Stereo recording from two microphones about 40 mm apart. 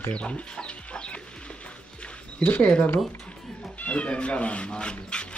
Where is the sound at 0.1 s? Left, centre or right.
Left.